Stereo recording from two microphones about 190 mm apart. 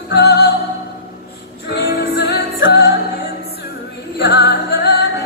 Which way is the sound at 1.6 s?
60° left (ahead or behind).